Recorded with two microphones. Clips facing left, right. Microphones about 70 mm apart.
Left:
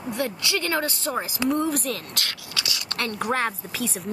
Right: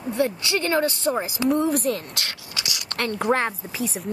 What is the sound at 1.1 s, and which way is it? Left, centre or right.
Speech, centre.